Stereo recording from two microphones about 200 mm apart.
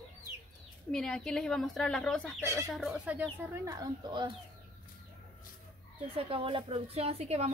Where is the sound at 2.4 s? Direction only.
15° right (ahead or behind).